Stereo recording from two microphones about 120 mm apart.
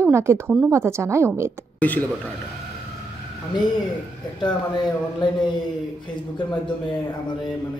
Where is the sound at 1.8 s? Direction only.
10° left (ahead or behind).